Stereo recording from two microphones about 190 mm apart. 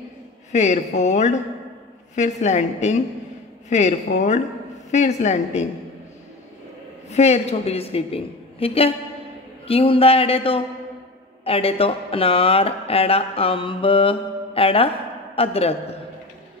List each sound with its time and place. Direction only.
0.5 s a woman's voice: 40° left (ahead or behind)
7.1 s a woman's voice: 35° left (ahead or behind)